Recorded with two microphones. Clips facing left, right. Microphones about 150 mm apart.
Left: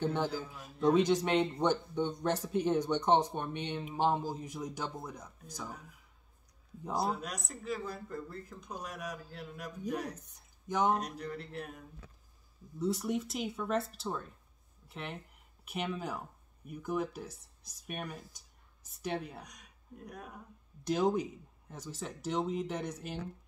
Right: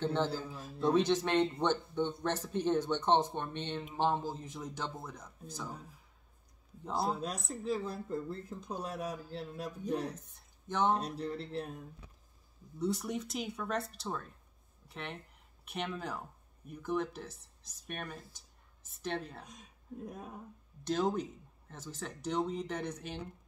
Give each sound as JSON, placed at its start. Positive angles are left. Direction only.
{"t": 0.0, "sound": "speech", "side_deg": 15}
{"t": 7.1, "sound": "speech", "side_deg": -30}
{"t": 10.1, "sound": "speech", "side_deg": 10}
{"t": 11.0, "sound": "speech", "side_deg": -30}
{"t": 12.7, "sound": "speech", "side_deg": 0}
{"t": 19.4, "sound": "speech", "side_deg": -25}
{"t": 20.8, "sound": "speech", "side_deg": 10}